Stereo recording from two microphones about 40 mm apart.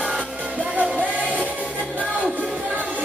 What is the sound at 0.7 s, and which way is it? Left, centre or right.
Music, right.